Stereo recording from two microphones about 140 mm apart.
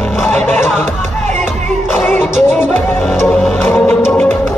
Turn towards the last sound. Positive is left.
turn(degrees=15)  # may be behind; listen again after turning